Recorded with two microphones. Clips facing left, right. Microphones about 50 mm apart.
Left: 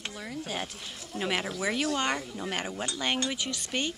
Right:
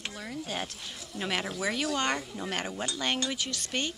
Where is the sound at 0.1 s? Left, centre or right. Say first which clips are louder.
Even; centre.